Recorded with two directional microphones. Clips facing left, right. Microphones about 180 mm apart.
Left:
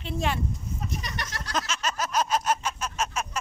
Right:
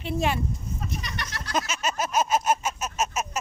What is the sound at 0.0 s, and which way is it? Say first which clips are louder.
Speech: right 3 dB; 10° right (ahead or behind).